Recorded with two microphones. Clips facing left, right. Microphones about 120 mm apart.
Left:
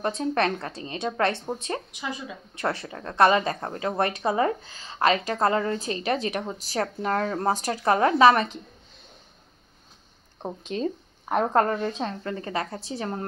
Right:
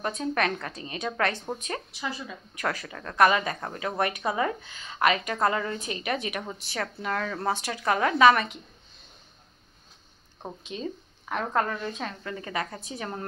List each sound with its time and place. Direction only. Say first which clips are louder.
0.0 s speech: left 3 dB; 30° left (ahead or behind)
2.0 s speech: left 1 dB; 15° left (ahead or behind)
2.5 s a woman's voice: left 3 dB; 25° left (ahead or behind)
10.7 s speech: left 7 dB; 45° left (ahead or behind)
11.4 s a woman's voice: left 4 dB; 35° left (ahead or behind)